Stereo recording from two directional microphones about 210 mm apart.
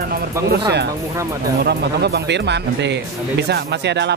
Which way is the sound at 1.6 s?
50° right (ahead or behind).